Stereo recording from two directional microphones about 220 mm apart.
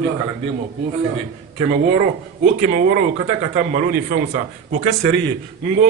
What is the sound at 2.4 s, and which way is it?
Speech, 35° right (ahead or behind).